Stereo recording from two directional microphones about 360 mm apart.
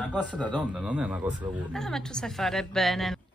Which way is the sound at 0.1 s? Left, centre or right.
Centre.